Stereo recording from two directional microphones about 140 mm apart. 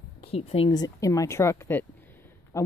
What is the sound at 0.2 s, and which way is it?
Speech, 45° left (ahead or behind).